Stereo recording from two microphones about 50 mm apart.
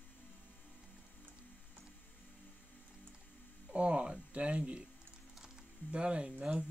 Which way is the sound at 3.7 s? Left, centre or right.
Right.